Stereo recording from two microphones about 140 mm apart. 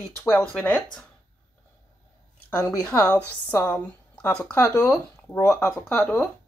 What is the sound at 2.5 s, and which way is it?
A woman's voice, 15° left (ahead or behind).